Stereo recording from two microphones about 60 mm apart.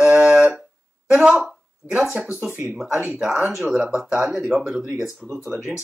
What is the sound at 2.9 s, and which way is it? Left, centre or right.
Speech, centre.